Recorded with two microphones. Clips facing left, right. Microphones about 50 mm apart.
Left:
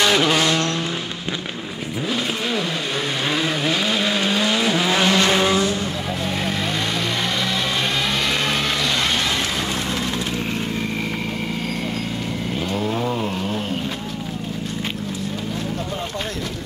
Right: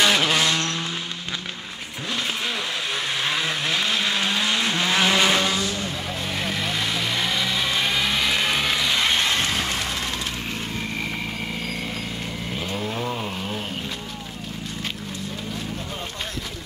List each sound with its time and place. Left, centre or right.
0.0 s vehicle: centre
3.3 s vehicle: centre
5.4 s vehicle: centre
6.2 s vehicle: centre
12.5 s vehicle: centre